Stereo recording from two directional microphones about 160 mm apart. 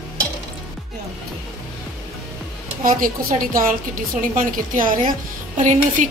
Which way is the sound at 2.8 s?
60° right (ahead or behind).